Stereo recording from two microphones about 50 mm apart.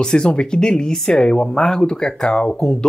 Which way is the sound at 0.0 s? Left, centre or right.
Centre.